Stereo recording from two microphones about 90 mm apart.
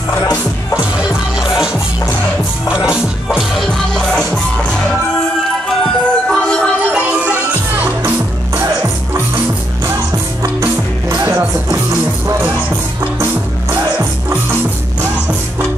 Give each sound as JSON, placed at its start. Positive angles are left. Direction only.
{"t": 0.7, "sound": "music", "side_deg": -10}
{"t": 6.0, "sound": "music", "side_deg": 10}
{"t": 6.8, "sound": "music", "side_deg": -15}
{"t": 10.4, "sound": "music", "side_deg": -40}
{"t": 13.9, "sound": "music", "side_deg": -20}